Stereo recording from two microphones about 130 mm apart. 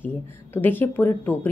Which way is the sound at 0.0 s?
15° left (ahead or behind).